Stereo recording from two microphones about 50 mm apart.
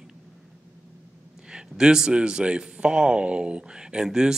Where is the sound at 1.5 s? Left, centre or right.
Centre.